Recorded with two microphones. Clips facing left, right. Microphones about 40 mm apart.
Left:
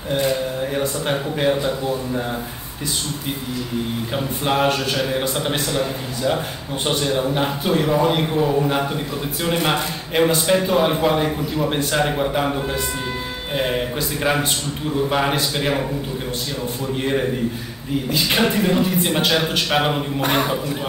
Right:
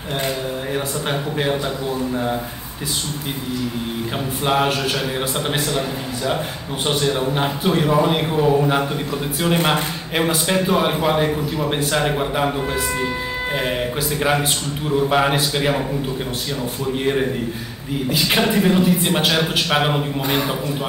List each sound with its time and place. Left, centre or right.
0.7 s a man's voice: centre
4.5 s a man's voice: centre
7.2 s a man's voice: centre
13.6 s a man's voice: centre
18.1 s a man's voice: centre
20.2 s a man's voice: left